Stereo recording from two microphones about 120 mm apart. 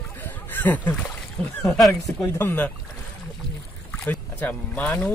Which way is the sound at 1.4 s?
10° left (ahead or behind).